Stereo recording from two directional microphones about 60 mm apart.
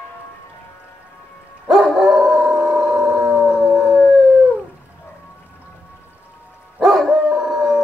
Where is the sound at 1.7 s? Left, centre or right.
Centre.